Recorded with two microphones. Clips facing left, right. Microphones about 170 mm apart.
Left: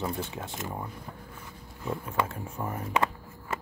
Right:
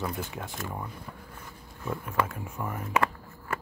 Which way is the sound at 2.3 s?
30° left (ahead or behind).